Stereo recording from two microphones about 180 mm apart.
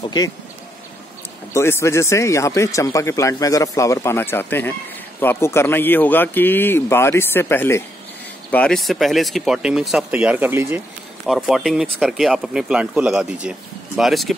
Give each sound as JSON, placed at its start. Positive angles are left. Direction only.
{"t": 1.5, "sound": "speech", "side_deg": 15}